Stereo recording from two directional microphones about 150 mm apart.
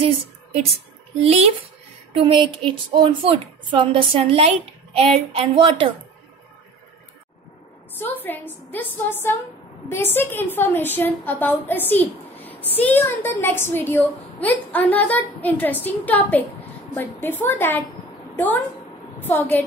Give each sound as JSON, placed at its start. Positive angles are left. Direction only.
{"t": 1.2, "sound": "a woman's voice", "side_deg": -45}
{"t": 8.0, "sound": "a woman's voice", "side_deg": 15}